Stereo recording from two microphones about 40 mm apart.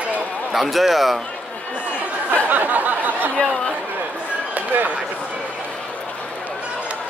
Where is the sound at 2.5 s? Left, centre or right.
Right.